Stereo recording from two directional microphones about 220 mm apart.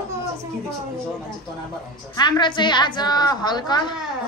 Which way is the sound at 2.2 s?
20° left (ahead or behind).